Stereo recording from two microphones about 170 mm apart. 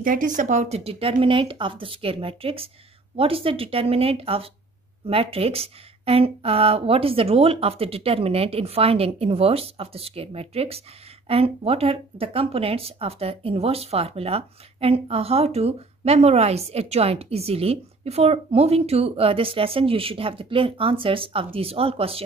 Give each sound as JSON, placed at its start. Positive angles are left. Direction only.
{"t": 0.0, "sound": "speech", "side_deg": -55}